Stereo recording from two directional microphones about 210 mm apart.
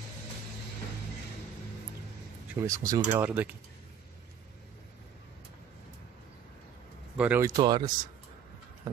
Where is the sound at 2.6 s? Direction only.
15° right (ahead or behind).